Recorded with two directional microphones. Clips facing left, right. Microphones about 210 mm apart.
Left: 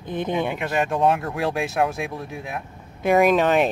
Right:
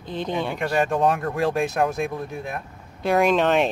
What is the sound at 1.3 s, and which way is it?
Speech, centre (ahead or behind).